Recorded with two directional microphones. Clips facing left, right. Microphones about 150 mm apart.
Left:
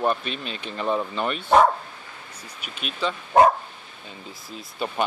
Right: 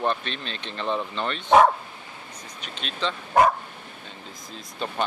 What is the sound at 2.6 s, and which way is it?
Speech, 10° left (ahead or behind).